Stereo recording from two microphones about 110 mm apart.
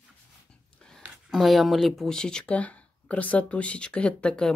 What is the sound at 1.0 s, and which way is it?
Speech, centre (ahead or behind).